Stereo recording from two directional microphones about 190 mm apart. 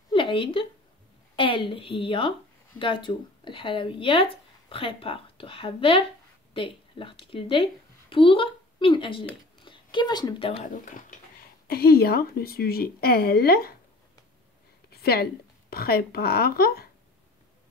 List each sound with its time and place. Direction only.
0.1 s a woman's voice: 25° left (ahead or behind)
10.7 s speech: 40° left (ahead or behind)
11.6 s speech: 55° left (ahead or behind)
14.9 s a sound: 55° left (ahead or behind)
15.7 s speech: 55° left (ahead or behind)